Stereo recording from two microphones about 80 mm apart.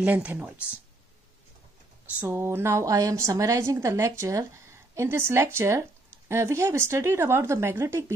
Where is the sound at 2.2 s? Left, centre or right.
Right.